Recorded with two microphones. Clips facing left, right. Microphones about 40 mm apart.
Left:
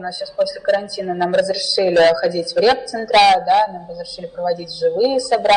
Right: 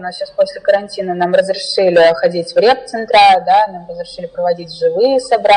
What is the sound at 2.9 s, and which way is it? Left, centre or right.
A woman's voice, centre.